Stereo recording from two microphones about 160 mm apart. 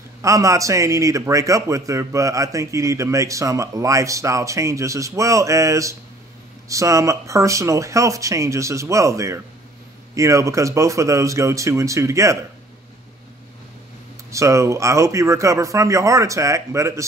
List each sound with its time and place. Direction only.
0.2 s a man's voice: 20° right (ahead or behind)
14.3 s a man's voice: 20° right (ahead or behind)